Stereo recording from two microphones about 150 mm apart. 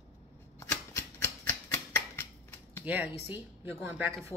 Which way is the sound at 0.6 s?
15° left (ahead or behind).